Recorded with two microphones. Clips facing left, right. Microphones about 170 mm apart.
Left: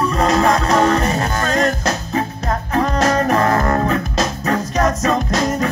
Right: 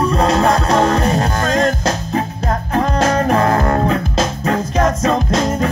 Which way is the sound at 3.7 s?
30° right (ahead or behind).